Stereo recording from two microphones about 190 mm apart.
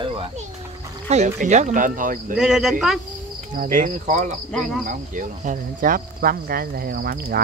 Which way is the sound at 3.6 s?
45° right (ahead or behind).